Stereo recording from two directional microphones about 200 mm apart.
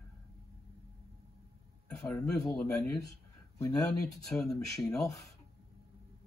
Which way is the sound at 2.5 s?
5° left (ahead or behind).